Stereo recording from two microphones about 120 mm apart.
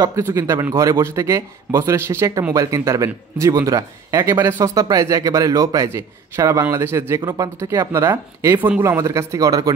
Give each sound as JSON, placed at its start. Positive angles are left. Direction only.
{"t": 0.0, "sound": "a man's voice", "side_deg": -25}
{"t": 8.8, "sound": "a man's voice", "side_deg": -25}